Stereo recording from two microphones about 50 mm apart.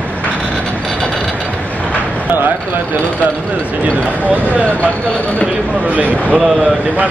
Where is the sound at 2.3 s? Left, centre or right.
Right.